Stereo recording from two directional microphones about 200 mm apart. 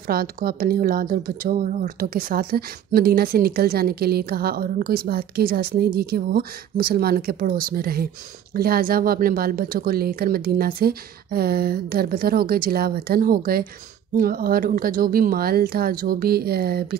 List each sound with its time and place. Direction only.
0.0 s speech: 45° right (ahead or behind)